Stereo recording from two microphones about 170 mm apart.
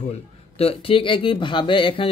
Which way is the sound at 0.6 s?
35° left (ahead or behind).